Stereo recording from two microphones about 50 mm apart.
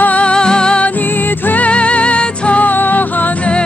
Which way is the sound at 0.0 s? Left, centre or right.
Left.